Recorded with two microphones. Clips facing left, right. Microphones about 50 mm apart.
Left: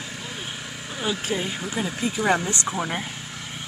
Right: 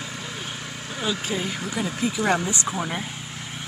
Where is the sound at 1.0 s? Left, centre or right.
Centre.